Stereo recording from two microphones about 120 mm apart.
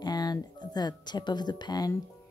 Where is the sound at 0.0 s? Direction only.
35° left (ahead or behind).